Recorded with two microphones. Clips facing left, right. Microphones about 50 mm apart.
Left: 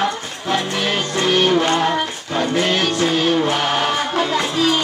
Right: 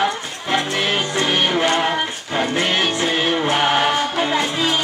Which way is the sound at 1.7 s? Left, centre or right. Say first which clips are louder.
Left 1 dB; centre.